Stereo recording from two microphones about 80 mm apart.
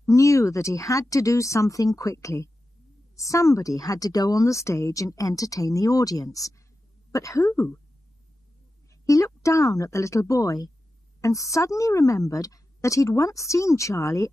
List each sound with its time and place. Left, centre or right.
0.0 s a woman's voice: left
9.0 s a sound: left
9.8 s a woman's voice: left